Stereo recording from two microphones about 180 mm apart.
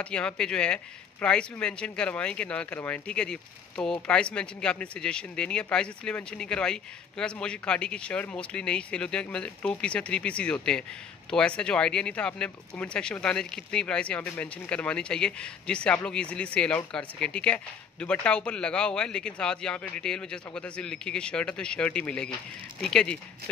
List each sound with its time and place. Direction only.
0.0 s speech: 5° left (ahead or behind)